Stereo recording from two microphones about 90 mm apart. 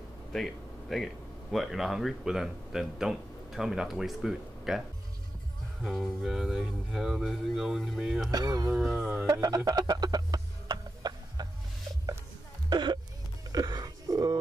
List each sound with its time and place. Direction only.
0.3 s speech: 5° left (ahead or behind)
5.9 s speech: centre (ahead or behind)
8.3 s speech: 45° right (ahead or behind)
8.6 s speech: centre (ahead or behind)
9.3 s speech: 45° right (ahead or behind)
9.7 s music: 50° right (ahead or behind)
12.6 s a sound: 55° right (ahead or behind)